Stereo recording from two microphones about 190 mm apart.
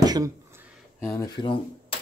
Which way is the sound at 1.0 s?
15° left (ahead or behind).